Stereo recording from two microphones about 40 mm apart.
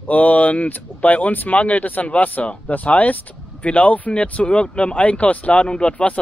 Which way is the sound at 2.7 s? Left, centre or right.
Left.